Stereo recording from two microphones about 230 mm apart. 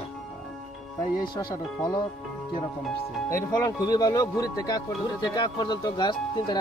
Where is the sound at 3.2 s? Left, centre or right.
Centre.